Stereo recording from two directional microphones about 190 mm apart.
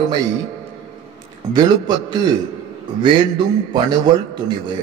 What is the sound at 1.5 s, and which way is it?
A man's voice, 20° right (ahead or behind).